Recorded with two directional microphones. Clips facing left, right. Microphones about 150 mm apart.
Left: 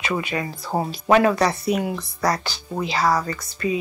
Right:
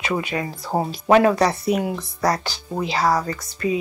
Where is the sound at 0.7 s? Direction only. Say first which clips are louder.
Right 1 dB; 15° right (ahead or behind).